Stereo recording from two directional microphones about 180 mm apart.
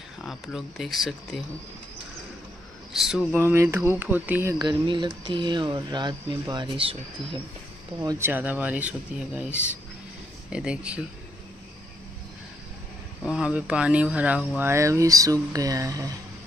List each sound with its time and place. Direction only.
0.2 s speech: centre (ahead or behind)
3.0 s speech: 5° right (ahead or behind)
3.3 s speech: 15° right (ahead or behind)
4.6 s speech: 25° right (ahead or behind)
8.0 s speech: 20° right (ahead or behind)
8.3 s speech: 10° right (ahead or behind)
13.3 s speech: 5° right (ahead or behind)